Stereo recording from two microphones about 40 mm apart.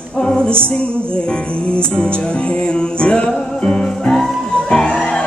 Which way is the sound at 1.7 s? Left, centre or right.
Left.